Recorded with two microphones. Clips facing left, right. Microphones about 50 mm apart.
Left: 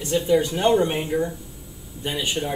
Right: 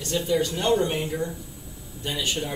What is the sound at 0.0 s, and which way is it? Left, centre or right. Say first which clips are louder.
Speech: left 4 dB; centre.